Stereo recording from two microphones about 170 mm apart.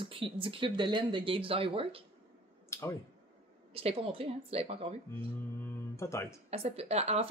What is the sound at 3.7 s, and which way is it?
Speech, 35° right (ahead or behind).